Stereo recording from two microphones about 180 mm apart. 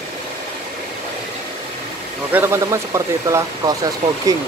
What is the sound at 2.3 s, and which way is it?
Speech, 15° right (ahead or behind).